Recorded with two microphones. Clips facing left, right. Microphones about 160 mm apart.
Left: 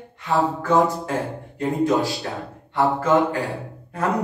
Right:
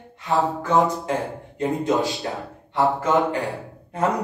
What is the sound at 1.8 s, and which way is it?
Speech, 20° right (ahead or behind).